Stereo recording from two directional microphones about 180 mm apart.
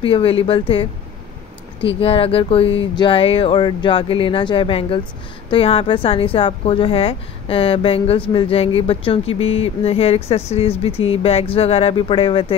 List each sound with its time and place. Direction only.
0.0 s a woman's voice: 30° left (ahead or behind)